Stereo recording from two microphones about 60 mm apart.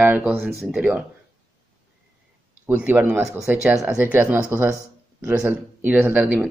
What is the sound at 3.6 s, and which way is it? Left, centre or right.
Speech, centre.